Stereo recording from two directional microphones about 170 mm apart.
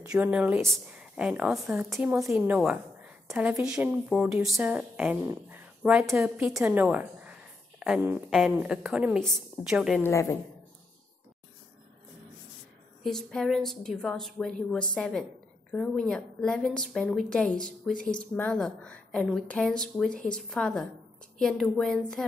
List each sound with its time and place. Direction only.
0.0 s a woman's voice: 5° right (ahead or behind)
10.0 s a woman's voice: 20° left (ahead or behind)
13.0 s a woman's voice: centre (ahead or behind)